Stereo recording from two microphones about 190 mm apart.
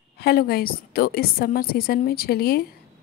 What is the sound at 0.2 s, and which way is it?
A woman's voice, 55° left (ahead or behind).